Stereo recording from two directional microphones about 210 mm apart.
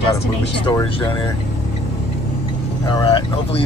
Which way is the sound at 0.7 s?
20° left (ahead or behind).